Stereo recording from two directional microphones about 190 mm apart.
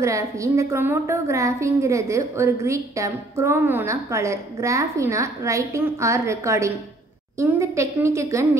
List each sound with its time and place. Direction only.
0.0 s a woman's voice: 15° right (ahead or behind)